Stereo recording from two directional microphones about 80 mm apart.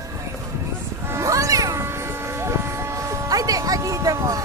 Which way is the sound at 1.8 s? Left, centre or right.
Right.